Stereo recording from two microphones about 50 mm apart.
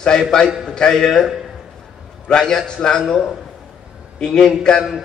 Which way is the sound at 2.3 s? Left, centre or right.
Centre.